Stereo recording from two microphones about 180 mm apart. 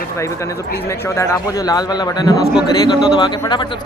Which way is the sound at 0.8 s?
15° left (ahead or behind).